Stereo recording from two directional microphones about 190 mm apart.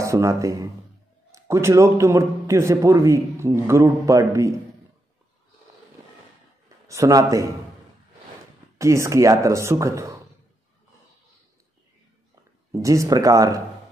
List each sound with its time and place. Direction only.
0.0 s a man's voice: 15° right (ahead or behind)
6.9 s a man's voice: 15° right (ahead or behind)
8.7 s a man's voice: 15° right (ahead or behind)
12.8 s a man's voice: 15° right (ahead or behind)